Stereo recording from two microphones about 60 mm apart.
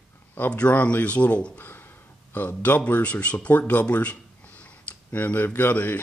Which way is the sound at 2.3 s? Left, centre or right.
Left.